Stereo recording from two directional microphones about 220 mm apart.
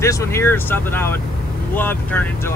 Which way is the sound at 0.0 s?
15° left (ahead or behind).